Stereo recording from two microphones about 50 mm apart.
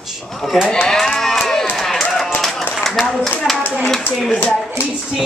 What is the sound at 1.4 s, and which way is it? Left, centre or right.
Music, centre.